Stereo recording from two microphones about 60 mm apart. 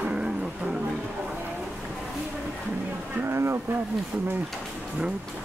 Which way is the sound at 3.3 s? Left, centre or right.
Right.